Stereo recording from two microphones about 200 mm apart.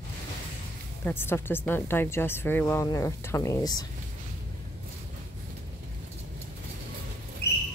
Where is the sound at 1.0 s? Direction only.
10° left (ahead or behind).